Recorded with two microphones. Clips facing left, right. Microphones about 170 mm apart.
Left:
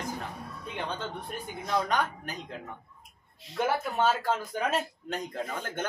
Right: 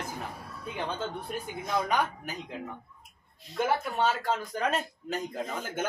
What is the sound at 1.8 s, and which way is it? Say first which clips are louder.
Speech: right 1 dB; 10° right (ahead or behind).